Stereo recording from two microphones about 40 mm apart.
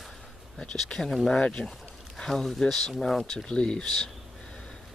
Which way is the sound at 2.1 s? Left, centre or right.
Centre.